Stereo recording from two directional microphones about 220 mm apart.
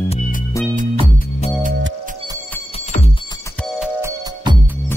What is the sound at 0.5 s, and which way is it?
Music, 15° left (ahead or behind).